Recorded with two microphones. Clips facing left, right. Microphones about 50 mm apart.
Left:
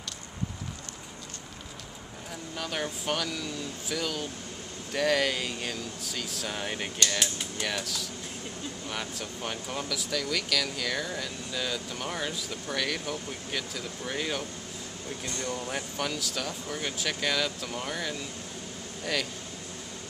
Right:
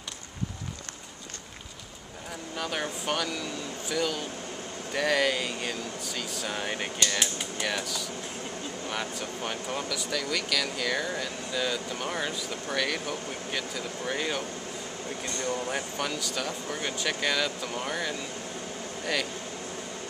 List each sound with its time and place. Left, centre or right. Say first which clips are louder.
2.5 s speech: right 1 dB; centre